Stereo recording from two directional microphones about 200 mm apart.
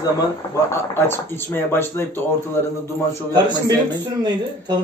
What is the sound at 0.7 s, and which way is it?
Speech, 10° left (ahead or behind).